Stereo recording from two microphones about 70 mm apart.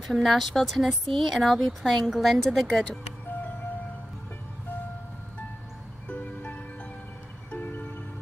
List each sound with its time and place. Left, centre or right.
0.0 s speech: centre
6.0 s music: centre